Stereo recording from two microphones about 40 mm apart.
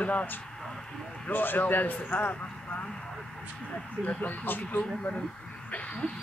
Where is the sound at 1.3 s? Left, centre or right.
Left.